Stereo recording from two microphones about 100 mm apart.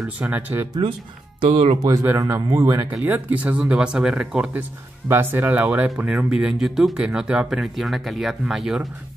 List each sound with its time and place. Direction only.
0.0 s speech: 15° right (ahead or behind)
1.4 s speech: 70° right (ahead or behind)
1.8 s speech: 35° right (ahead or behind)
2.9 s speech: 15° right (ahead or behind)
5.0 s speech: 20° right (ahead or behind); by 8.8 s 5° right (ahead or behind)